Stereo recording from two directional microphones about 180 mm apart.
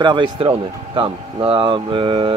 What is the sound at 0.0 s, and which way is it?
Speech, 25° right (ahead or behind).